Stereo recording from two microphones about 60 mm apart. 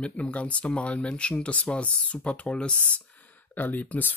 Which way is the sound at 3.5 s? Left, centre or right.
Left.